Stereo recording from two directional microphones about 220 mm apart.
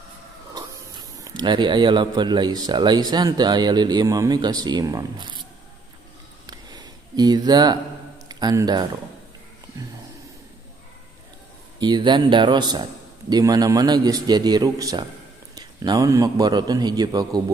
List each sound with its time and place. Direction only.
0.6 s speech: 20° right (ahead or behind)
6.4 s a sound: 20° right (ahead or behind)
8.3 s speech: 20° right (ahead or behind)
11.8 s a man's voice: 20° right (ahead or behind)